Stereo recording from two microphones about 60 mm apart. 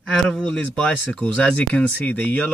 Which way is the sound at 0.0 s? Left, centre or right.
Centre.